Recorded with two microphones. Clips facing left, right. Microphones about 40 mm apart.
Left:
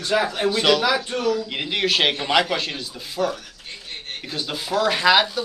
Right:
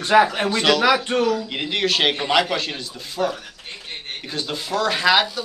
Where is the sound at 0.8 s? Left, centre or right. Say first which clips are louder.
Right 3 dB; right.